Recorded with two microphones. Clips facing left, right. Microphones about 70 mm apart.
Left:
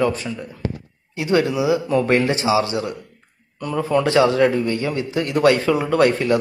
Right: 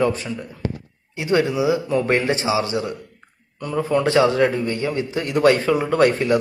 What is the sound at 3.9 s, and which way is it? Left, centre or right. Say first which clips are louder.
A man's voice: left 1 dB; right.